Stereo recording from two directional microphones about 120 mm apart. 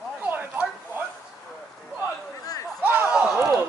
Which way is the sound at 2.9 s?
10° right (ahead or behind).